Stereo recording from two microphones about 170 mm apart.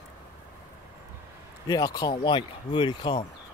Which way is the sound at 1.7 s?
20° left (ahead or behind).